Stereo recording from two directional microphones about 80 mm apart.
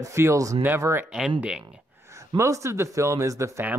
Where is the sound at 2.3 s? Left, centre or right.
Right.